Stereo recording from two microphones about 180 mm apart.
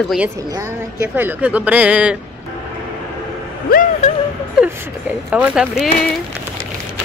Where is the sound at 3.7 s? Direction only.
50° left (ahead or behind).